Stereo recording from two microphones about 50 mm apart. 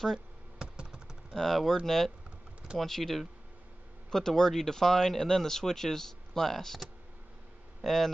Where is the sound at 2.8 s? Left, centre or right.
Centre.